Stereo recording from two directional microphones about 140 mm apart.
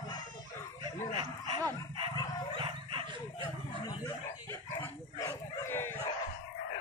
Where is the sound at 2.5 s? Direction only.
40° right (ahead or behind).